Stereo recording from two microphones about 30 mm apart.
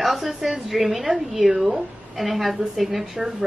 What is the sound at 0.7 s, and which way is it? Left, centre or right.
Speech, centre.